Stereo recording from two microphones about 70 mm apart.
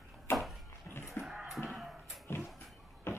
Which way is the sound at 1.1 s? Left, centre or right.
Centre.